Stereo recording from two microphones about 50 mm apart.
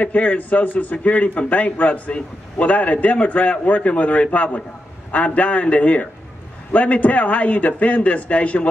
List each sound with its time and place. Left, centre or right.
0.0 s a man's voice: left